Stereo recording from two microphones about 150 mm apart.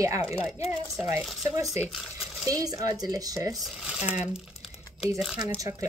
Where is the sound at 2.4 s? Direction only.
25° right (ahead or behind).